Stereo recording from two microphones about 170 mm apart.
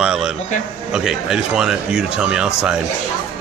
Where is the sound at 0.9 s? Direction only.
5° right (ahead or behind).